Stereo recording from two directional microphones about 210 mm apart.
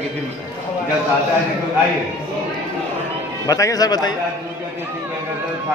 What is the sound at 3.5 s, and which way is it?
Speech, 15° left (ahead or behind).